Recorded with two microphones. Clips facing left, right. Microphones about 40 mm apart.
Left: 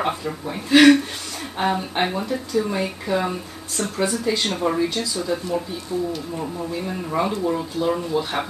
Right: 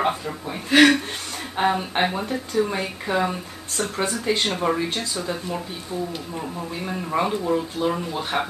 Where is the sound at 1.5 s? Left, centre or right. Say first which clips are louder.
Right 1 dB; centre.